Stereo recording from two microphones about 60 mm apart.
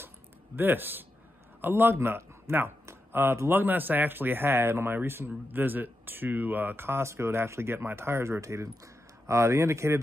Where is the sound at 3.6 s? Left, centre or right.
Right.